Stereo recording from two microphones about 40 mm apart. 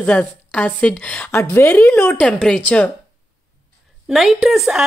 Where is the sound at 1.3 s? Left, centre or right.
Left.